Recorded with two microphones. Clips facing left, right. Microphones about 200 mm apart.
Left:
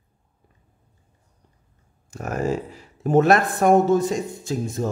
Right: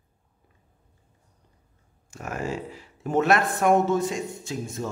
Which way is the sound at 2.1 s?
40° left (ahead or behind).